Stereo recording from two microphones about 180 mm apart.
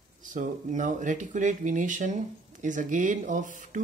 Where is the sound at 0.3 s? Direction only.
45° right (ahead or behind).